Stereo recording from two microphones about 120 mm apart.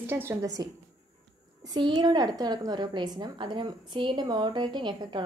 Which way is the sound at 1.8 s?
40° right (ahead or behind).